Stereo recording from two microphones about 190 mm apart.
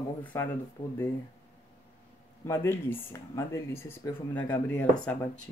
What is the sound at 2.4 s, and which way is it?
Speech, 15° left (ahead or behind).